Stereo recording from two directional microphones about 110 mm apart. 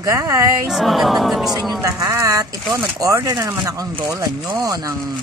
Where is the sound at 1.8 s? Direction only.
30° right (ahead or behind).